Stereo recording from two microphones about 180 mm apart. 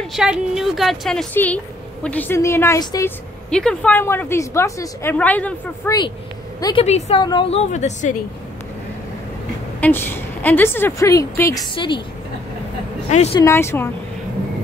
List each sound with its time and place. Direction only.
0.0 s a woman's voice: centre (ahead or behind); by 3.1 s 20° left (ahead or behind)
3.4 s a woman's voice: 5° left (ahead or behind)
6.6 s a woman's voice: 30° left (ahead or behind)
9.8 s a woman's voice: 10° left (ahead or behind); by 12.0 s 25° left (ahead or behind)
13.1 s a woman's voice: 35° left (ahead or behind)
13.4 s a woman's voice: 15° left (ahead or behind)